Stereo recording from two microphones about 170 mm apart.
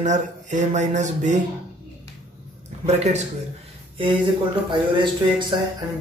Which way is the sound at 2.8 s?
40° right (ahead or behind).